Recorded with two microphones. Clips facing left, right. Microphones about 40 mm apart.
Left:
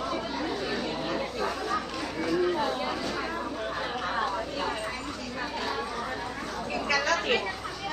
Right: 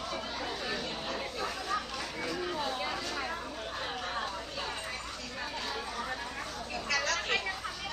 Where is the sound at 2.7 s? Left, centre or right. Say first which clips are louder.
Left 4 dB; centre.